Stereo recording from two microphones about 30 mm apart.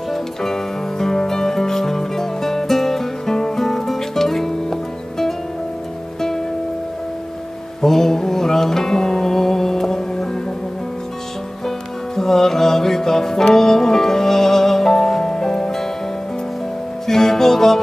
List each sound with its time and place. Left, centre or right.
0.1 s music: centre
7.8 s music: centre
12.2 s music: centre
17.0 s music: centre